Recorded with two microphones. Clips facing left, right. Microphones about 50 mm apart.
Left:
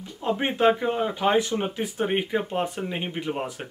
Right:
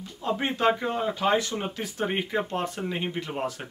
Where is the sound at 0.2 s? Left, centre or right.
Left.